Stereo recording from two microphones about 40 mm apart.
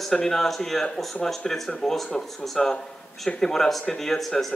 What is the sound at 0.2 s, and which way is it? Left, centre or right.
Speech, centre.